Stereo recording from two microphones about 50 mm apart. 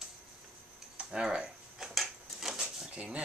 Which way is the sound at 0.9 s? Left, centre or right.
Right.